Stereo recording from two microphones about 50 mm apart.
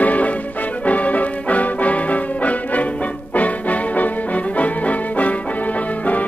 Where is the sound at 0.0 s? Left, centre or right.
Left.